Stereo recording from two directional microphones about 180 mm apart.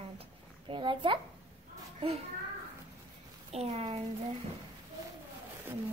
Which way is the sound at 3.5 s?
35° right (ahead or behind).